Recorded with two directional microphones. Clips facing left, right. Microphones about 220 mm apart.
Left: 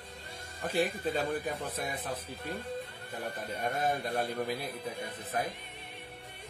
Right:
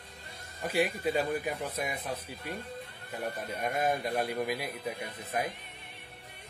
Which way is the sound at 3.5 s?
10° right (ahead or behind).